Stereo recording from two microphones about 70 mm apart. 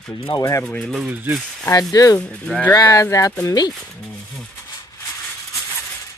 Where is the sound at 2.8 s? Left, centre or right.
Left.